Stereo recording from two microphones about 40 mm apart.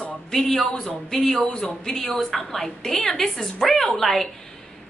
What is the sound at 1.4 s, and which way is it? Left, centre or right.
A woman's voice, centre.